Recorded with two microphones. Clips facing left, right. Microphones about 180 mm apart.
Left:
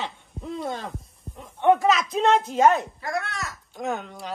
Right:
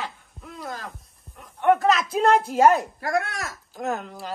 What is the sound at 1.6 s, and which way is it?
A woman's voice, centre (ahead or behind).